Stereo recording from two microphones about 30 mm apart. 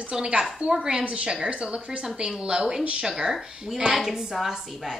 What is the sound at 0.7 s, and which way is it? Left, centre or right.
Speech, right.